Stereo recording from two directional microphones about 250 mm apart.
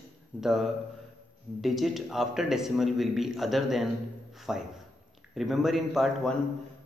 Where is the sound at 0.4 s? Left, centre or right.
Centre.